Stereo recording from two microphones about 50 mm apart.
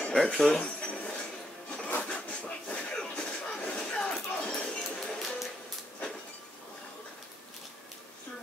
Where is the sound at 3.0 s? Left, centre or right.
Centre.